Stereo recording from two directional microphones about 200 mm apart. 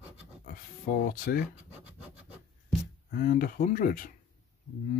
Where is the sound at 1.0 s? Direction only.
45° left (ahead or behind).